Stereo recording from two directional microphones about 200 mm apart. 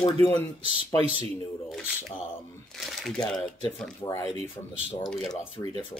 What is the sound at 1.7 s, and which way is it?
Speech, 5° right (ahead or behind).